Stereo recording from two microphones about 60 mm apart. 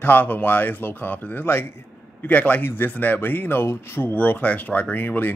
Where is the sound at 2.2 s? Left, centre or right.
Left.